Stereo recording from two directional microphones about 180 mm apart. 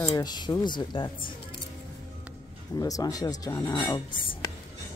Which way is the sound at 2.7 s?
20° left (ahead or behind).